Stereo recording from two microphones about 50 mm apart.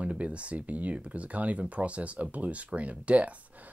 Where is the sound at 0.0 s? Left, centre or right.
Right.